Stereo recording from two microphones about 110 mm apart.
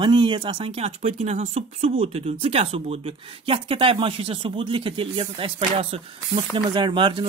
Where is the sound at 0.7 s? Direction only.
70° right (ahead or behind).